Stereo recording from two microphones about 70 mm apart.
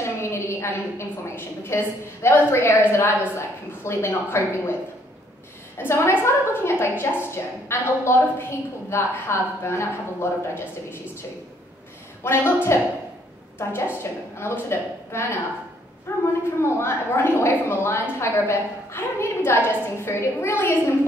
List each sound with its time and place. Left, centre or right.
0.0 s a woman's voice: left
5.8 s a woman's voice: left
12.2 s a woman's voice: left
13.6 s a woman's voice: left